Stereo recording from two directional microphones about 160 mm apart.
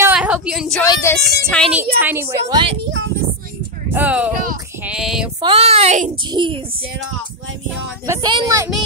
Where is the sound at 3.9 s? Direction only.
10° right (ahead or behind).